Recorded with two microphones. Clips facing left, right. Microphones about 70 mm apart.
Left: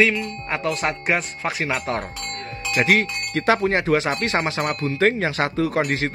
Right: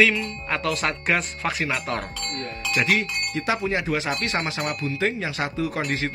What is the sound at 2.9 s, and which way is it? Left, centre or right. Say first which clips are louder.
Speech: left 4 dB; left.